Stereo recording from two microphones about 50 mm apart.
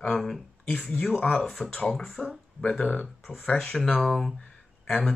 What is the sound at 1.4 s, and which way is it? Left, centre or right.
Speech, centre.